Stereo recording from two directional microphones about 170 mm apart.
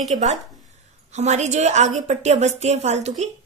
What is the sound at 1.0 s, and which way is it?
Speech, 40° right (ahead or behind).